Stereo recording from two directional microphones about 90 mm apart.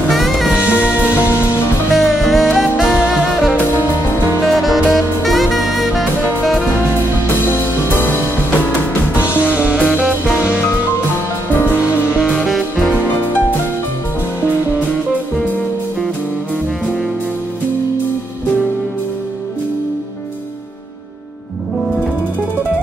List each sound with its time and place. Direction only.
0.1 s music: centre (ahead or behind)
0.5 s music: 15° right (ahead or behind)
1.9 s music: centre (ahead or behind)
7.4 s music: 25° left (ahead or behind)
9.4 s music: 15° right (ahead or behind)
11.5 s music: 25° left (ahead or behind)
12.4 s music: centre (ahead or behind)